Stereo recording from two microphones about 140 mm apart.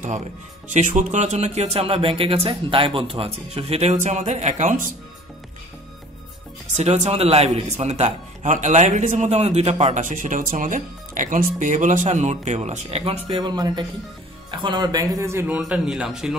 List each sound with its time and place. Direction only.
0.7 s speech: 60° right (ahead or behind)
6.8 s speech: 50° right (ahead or behind)
13.3 s a man's voice: 30° right (ahead or behind); by 16.3 s 5° right (ahead or behind)